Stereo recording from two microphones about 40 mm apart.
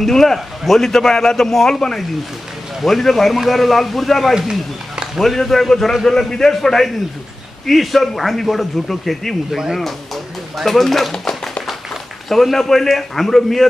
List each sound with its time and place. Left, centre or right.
0.0 s a man's voice: centre
4.4 s speech: centre
5.2 s a man's voice: centre